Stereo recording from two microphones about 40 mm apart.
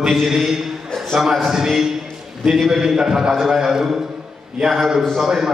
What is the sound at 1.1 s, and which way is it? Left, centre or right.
A man's voice, centre.